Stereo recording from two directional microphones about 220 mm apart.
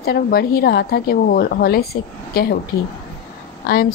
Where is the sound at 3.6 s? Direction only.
45° left (ahead or behind).